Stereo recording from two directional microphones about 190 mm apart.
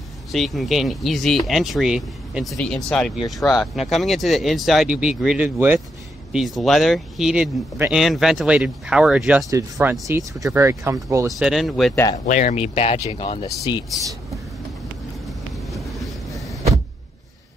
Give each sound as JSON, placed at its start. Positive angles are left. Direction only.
{"t": 0.3, "sound": "speech", "side_deg": 0}
{"t": 11.2, "sound": "speech", "side_deg": 0}
{"t": 11.9, "sound": "speech", "side_deg": 15}
{"t": 12.3, "sound": "speech", "side_deg": 40}
{"t": 15.2, "sound": "vehicle", "side_deg": 0}